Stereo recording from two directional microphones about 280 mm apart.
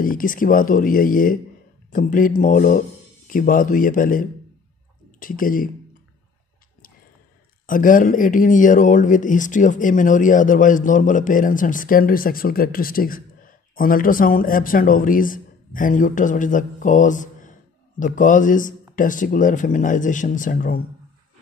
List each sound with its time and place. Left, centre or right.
0.0 s speech: left
7.6 s speech: left